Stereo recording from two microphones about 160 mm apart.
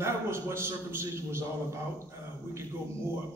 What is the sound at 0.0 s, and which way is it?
A man's voice, 15° right (ahead or behind).